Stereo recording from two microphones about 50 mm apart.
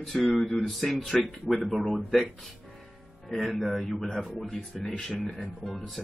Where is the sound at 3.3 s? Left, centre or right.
Centre.